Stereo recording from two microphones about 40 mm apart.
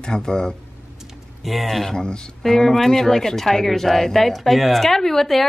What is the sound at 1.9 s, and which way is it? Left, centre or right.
Speech, centre.